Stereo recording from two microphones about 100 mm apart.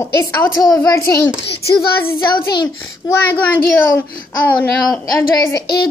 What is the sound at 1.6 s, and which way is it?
A child's voice, 25° left (ahead or behind).